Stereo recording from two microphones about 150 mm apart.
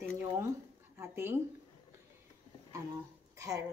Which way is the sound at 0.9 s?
15° right (ahead or behind).